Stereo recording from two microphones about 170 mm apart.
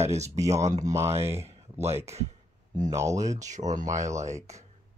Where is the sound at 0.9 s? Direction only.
15° right (ahead or behind).